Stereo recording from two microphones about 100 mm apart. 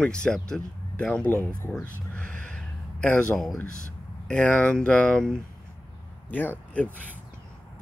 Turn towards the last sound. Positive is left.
turn(degrees=15)  # may be behind; listen again after turning